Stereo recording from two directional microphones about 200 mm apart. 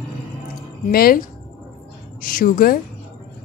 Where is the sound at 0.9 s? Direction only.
50° left (ahead or behind).